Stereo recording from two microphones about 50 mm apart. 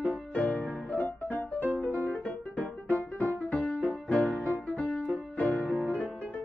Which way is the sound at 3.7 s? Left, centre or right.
Left.